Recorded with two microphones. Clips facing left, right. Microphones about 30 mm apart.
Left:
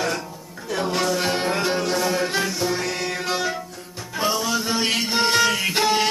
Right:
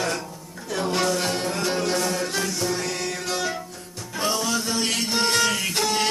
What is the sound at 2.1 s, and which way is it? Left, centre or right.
Music, centre.